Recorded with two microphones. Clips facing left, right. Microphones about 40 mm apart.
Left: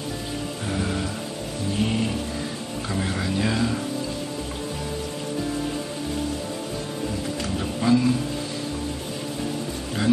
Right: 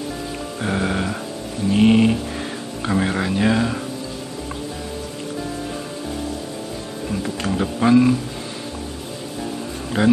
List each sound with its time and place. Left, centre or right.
0.6 s music: right
1.7 s a sound: right
2.8 s speech: right
7.4 s speech: right
10.0 s speech: right